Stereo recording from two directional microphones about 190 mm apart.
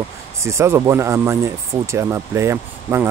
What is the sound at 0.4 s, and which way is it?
Speech, 15° right (ahead or behind).